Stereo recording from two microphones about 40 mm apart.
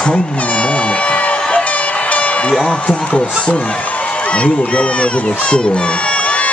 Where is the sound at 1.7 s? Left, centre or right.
Left.